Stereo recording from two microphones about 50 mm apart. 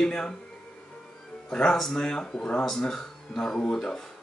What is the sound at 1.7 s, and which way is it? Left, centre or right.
Speech, centre.